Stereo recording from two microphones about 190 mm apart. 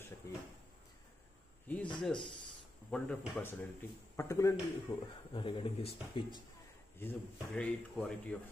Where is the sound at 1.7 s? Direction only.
10° left (ahead or behind).